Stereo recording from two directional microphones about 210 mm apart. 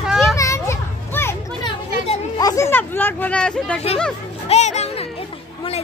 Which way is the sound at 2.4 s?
15° left (ahead or behind).